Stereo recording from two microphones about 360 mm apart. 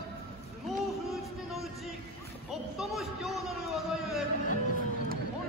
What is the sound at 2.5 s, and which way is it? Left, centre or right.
A man's voice, centre.